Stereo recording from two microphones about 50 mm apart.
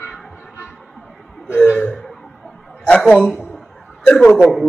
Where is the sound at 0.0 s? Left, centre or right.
Centre.